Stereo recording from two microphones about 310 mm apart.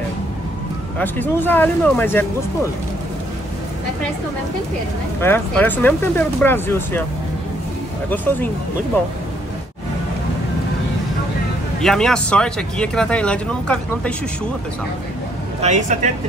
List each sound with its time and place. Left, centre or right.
0.9 s speech: centre
5.2 s speech: centre
11.8 s speech: centre
15.6 s speech: right